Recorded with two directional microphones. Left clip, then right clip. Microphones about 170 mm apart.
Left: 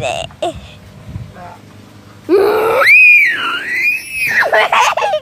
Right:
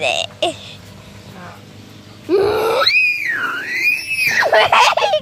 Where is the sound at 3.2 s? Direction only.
45° left (ahead or behind).